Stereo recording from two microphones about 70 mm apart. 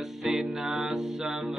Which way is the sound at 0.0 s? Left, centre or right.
Centre.